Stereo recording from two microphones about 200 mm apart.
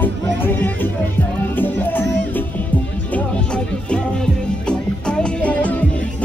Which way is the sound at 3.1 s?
5° left (ahead or behind).